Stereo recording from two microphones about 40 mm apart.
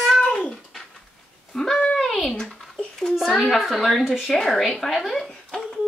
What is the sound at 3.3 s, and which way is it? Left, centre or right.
Speech, centre.